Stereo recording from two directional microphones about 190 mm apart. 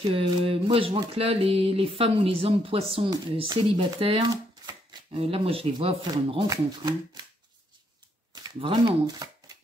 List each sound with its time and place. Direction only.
0.1 s speech: 25° right (ahead or behind)
8.5 s speech: 25° right (ahead or behind)